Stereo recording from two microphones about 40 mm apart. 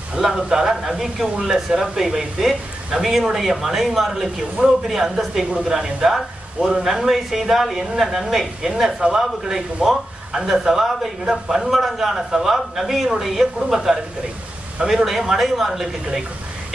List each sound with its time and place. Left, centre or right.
0.2 s speech: centre
15.0 s speech: centre